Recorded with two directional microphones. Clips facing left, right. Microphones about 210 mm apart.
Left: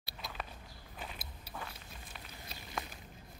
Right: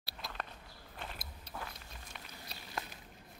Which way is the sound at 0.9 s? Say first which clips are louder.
Even; 5° left (ahead or behind).